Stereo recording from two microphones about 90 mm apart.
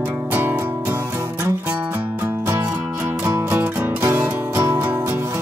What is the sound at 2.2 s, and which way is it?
Music, 30° right (ahead or behind).